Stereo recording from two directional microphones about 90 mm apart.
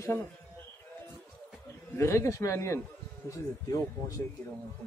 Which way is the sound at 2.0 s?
30° left (ahead or behind).